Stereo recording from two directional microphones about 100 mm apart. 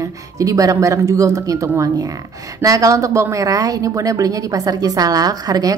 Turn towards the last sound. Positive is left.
turn(degrees=-40)  # may be behind; listen again after turning